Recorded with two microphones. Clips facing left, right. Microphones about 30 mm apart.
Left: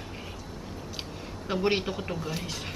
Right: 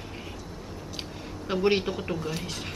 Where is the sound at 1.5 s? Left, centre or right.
Centre.